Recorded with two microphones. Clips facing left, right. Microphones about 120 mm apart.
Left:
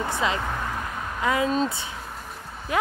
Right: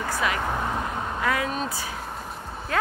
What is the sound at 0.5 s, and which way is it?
Vehicle, 20° right (ahead or behind).